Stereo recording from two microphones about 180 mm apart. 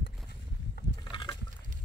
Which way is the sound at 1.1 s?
25° left (ahead or behind).